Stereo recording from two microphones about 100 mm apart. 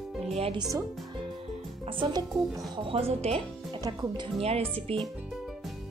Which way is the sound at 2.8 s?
75° right (ahead or behind).